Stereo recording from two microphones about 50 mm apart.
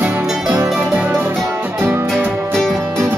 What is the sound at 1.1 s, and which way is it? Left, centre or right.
Music, right.